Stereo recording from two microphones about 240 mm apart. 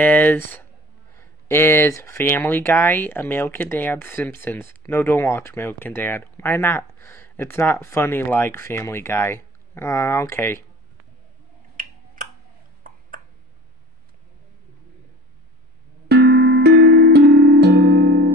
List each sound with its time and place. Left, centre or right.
0.0 s speech: centre
11.8 s finger snapping: right
12.2 s a sound: right
16.1 s music: right